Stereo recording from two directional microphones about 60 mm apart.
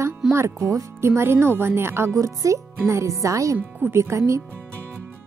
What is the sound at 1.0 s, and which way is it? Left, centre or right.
Speech, right.